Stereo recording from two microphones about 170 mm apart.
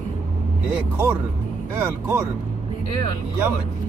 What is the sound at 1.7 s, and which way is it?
Speech, 15° right (ahead or behind).